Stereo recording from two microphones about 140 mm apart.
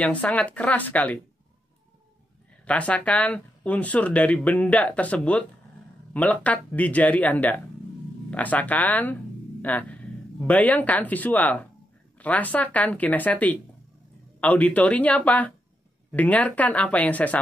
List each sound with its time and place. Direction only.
0.0 s speech: 10° left (ahead or behind)
2.6 s speech: 10° left (ahead or behind)